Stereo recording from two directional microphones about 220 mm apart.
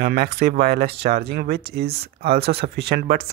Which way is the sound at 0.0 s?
45° right (ahead or behind).